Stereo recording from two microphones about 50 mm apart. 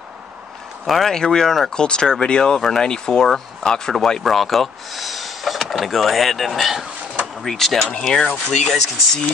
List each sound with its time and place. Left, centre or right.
0.8 s speech: centre